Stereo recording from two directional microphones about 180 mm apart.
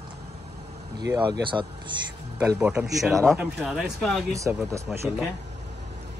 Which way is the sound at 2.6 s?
5° right (ahead or behind).